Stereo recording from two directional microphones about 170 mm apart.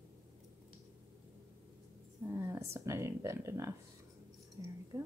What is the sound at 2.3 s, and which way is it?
Speech, 15° right (ahead or behind).